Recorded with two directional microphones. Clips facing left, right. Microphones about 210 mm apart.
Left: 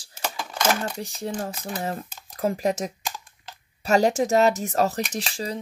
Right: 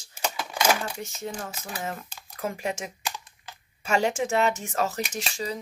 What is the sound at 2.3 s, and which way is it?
Speech, 35° left (ahead or behind).